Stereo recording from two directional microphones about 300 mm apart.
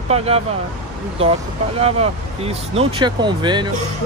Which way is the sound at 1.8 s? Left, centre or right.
Centre.